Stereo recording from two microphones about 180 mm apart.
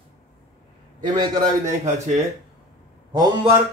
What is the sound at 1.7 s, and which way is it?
Speech, 40° right (ahead or behind).